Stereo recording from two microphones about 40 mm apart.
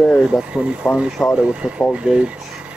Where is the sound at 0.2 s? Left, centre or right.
Right.